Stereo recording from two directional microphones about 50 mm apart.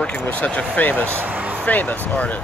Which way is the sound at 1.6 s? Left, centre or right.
Left.